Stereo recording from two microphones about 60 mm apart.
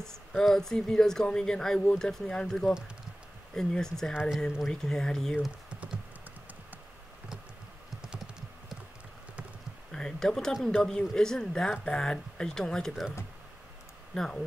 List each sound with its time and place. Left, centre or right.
0.4 s speech: centre
5.7 s computer keyboard: centre
8.1 s computer keyboard: centre
9.9 s speech: centre
14.1 s speech: centre